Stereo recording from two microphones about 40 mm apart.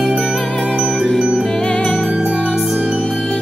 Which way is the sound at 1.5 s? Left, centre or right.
Centre.